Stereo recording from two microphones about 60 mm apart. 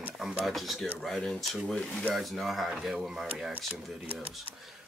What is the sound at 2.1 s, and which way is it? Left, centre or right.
Speech, centre.